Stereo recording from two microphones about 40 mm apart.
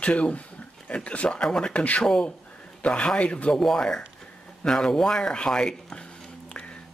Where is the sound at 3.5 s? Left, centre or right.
Centre.